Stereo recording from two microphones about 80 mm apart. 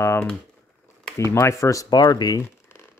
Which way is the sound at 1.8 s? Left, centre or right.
Left.